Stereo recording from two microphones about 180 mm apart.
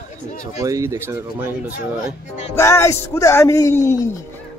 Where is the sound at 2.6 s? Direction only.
15° left (ahead or behind).